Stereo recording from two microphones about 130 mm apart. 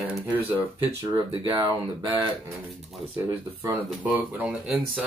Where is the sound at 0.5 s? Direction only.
20° right (ahead or behind).